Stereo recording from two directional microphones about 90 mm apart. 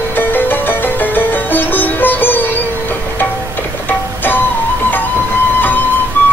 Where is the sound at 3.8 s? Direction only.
20° left (ahead or behind).